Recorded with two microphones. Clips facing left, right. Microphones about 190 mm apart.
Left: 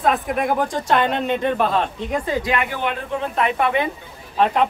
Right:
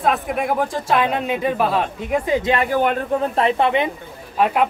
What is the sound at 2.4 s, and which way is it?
Speech, 35° right (ahead or behind).